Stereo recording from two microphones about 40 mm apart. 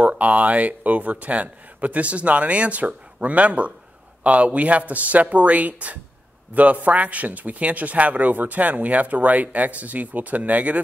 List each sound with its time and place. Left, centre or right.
0.2 s speech: right